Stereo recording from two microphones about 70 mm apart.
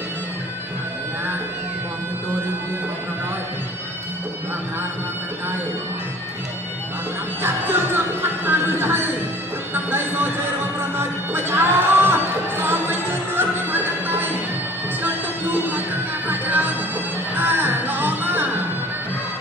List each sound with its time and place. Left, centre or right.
7.4 s music: right
9.8 s a sound: right
11.0 s music: right
15.5 s music: right